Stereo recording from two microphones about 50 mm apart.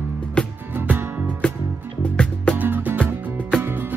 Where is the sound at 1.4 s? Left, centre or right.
Left.